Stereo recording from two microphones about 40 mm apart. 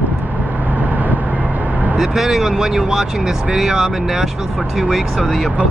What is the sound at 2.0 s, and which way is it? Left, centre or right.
Speech, centre.